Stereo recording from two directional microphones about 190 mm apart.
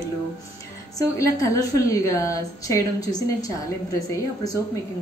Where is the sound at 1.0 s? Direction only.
15° left (ahead or behind).